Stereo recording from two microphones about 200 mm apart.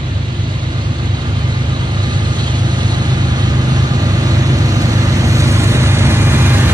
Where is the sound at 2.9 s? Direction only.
20° right (ahead or behind).